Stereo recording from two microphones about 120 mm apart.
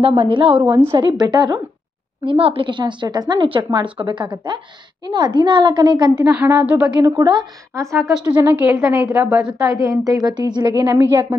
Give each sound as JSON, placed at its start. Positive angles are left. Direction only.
{"t": 0.0, "sound": "a woman's voice", "side_deg": -50}
{"t": 1.2, "sound": "a woman's voice", "side_deg": -35}
{"t": 2.2, "sound": "a woman's voice", "side_deg": -50}
{"t": 6.2, "sound": "a woman's voice", "side_deg": -10}
{"t": 7.0, "sound": "a woman's voice", "side_deg": -35}
{"t": 8.4, "sound": "a woman's voice", "side_deg": -15}
{"t": 9.7, "sound": "a woman's voice", "side_deg": -25}
{"t": 10.9, "sound": "speech", "side_deg": -20}